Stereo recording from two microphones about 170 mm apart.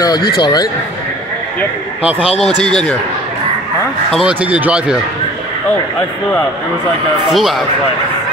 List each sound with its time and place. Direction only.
0.4 s speech: 20° left (ahead or behind)
2.1 s speech: 35° left (ahead or behind)
2.6 s speech: 5° left (ahead or behind)
4.1 s speech: 5° right (ahead or behind)
7.2 s speech: centre (ahead or behind)